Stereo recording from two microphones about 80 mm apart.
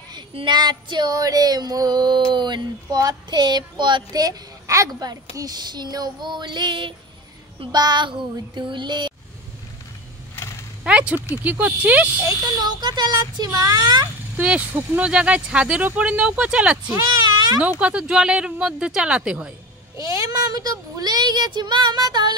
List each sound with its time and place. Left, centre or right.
0.1 s speech: right
4.1 s speech: right
7.7 s child singing: right
10.3 s a sound: left
10.8 s a sound: centre
11.2 s speech: centre
12.5 s speech: right
14.3 s speech: centre
14.7 s speech: right
15.0 s speech: centre
20.0 s speech: right